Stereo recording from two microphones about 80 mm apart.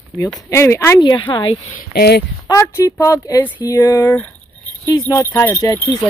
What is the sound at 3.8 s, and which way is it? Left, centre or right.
Speech, left.